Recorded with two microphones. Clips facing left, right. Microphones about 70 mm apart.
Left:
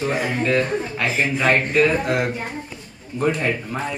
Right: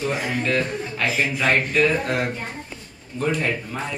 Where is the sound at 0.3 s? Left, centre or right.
Centre.